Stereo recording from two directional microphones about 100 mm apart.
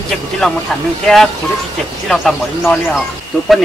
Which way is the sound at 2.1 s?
5° left (ahead or behind).